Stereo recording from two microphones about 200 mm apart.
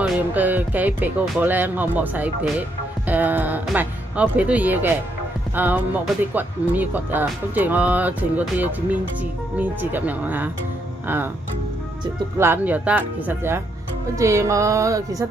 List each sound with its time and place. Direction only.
0.0 s speech: 10° right (ahead or behind)
12.4 s speech: 10° right (ahead or behind)